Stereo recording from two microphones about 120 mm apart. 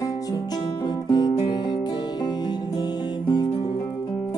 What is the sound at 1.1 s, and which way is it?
Music, 35° left (ahead or behind).